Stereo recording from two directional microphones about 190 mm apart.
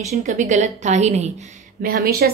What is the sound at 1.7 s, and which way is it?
Speech, 50° right (ahead or behind).